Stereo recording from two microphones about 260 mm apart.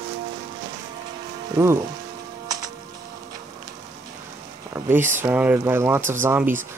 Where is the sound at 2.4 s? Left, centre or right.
Centre.